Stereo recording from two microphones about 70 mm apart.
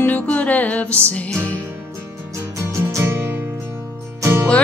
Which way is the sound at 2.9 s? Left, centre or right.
Right.